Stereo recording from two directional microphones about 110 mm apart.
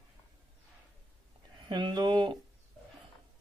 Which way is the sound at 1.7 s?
45° right (ahead or behind).